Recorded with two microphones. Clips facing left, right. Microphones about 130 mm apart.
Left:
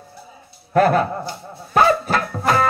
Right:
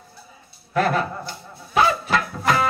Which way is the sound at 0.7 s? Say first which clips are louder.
Left 6 dB; 45° left (ahead or behind).